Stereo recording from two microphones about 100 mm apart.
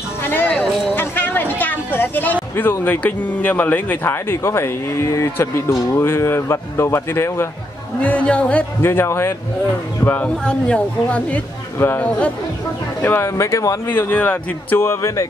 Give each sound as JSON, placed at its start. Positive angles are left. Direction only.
{"t": 0.2, "sound": "a sound", "side_deg": 20}
{"t": 2.5, "sound": "speech", "side_deg": 20}
{"t": 8.0, "sound": "a man's voice", "side_deg": 15}
{"t": 8.8, "sound": "speech", "side_deg": 25}
{"t": 10.0, "sound": "a man's voice", "side_deg": 15}
{"t": 13.8, "sound": "speech", "side_deg": 20}